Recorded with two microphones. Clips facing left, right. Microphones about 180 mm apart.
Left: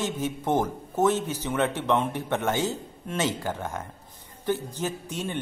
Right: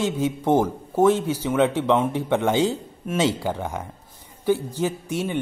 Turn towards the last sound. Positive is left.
turn(degrees=-10)  # may be behind; listen again after turning